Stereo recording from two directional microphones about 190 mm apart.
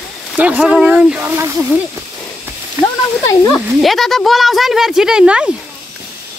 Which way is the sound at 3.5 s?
Centre (ahead or behind).